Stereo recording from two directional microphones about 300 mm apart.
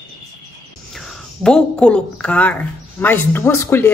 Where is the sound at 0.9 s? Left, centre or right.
Centre.